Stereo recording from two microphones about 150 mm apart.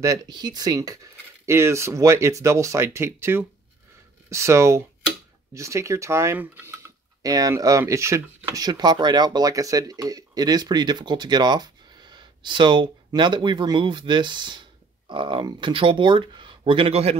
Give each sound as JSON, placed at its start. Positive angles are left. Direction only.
{"t": 0.0, "sound": "speech", "side_deg": -25}